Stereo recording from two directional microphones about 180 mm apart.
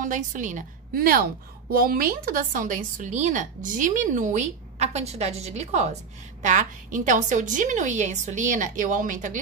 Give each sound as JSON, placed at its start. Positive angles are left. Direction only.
{"t": 0.0, "sound": "a woman's voice", "side_deg": -45}